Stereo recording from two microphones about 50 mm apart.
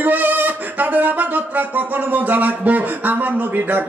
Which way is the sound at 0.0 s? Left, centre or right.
Right.